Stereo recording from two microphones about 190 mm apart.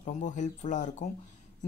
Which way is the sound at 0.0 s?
40° left (ahead or behind).